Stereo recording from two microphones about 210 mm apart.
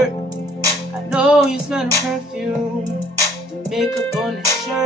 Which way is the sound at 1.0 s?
5° right (ahead or behind).